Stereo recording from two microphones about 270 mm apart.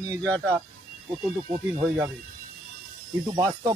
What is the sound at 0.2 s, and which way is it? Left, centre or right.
Speech, centre.